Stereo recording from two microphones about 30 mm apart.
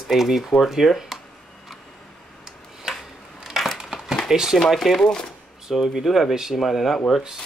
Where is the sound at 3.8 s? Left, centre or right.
Right.